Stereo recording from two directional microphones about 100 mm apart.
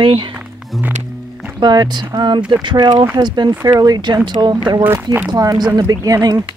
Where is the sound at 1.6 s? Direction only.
45° right (ahead or behind).